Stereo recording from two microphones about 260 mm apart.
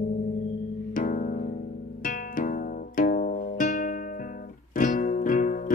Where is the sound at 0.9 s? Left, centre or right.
Left.